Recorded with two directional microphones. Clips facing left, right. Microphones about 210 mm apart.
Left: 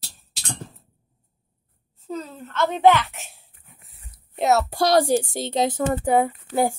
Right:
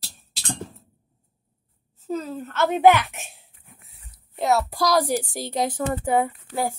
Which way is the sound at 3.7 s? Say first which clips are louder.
Right 2 dB; centre (ahead or behind).